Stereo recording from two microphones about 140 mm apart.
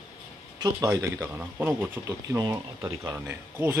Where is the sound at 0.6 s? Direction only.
25° right (ahead or behind).